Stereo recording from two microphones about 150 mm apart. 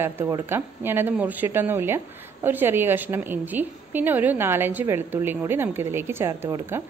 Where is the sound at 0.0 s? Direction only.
15° right (ahead or behind).